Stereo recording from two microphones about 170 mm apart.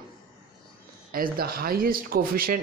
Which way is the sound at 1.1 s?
60° right (ahead or behind).